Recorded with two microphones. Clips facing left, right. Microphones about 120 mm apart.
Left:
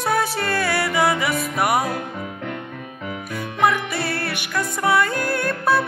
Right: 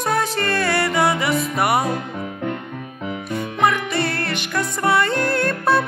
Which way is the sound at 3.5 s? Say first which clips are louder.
Even; centre (ahead or behind).